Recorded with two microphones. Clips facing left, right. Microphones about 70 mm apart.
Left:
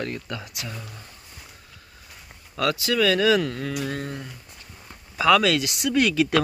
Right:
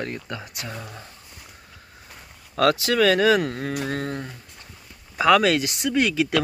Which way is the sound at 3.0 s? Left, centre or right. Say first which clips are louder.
Right 2 dB; right.